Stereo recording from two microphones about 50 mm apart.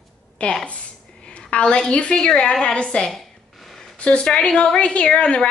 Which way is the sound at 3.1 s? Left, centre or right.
Centre.